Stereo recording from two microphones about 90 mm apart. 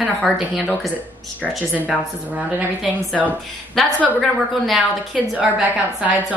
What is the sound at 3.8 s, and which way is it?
Speech, 5° left (ahead or behind).